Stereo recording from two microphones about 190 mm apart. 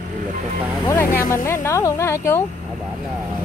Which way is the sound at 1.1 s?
45° left (ahead or behind).